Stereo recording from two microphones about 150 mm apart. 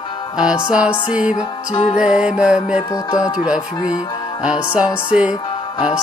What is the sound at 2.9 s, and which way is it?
Music, 20° left (ahead or behind).